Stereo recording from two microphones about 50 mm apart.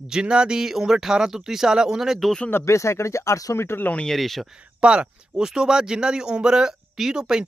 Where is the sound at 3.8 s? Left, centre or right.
Left.